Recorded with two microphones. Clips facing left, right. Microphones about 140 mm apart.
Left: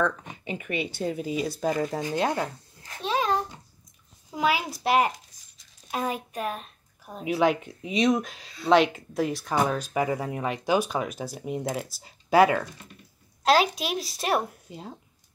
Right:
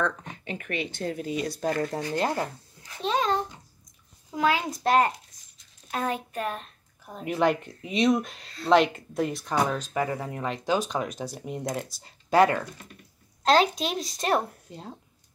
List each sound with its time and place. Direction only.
0.0 s speech: 10° left (ahead or behind)
2.1 s speech: centre (ahead or behind)
3.0 s babbling: 5° left (ahead or behind)
4.3 s speech: 15° left (ahead or behind)